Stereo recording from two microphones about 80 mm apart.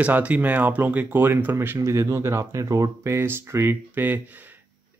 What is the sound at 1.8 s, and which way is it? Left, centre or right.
Speech, right.